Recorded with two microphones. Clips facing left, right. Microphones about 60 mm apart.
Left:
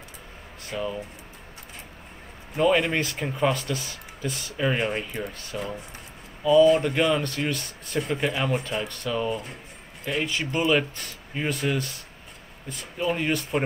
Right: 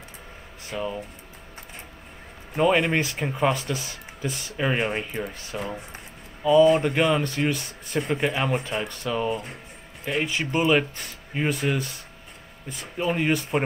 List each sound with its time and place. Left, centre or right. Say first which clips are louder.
0.7 s speech: even; centre
2.5 s speech: right 1 dB; centre
10.7 s speech: right 1 dB; centre